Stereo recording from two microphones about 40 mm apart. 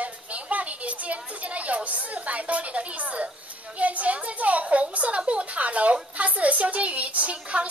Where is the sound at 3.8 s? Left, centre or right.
Right.